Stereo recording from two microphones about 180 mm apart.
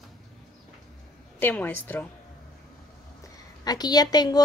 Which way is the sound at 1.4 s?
10° left (ahead or behind).